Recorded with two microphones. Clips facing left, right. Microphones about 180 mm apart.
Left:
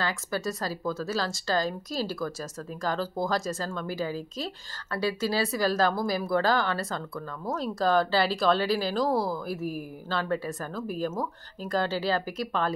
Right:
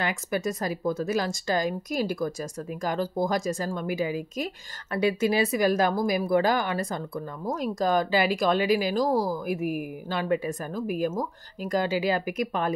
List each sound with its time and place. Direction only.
0.0 s speech: 20° right (ahead or behind)